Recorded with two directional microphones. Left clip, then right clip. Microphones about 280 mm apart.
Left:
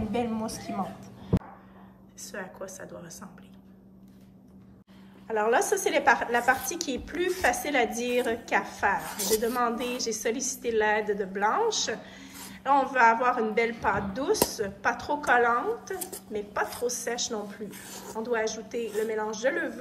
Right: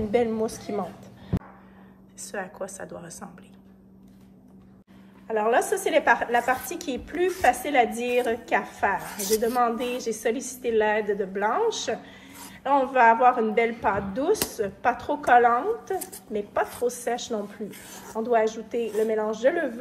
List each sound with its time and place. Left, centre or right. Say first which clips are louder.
0.4 s a woman's voice: right 5 dB; right
2.1 s a woman's voice: right 5 dB; centre
5.3 s a woman's voice: right 2 dB; centre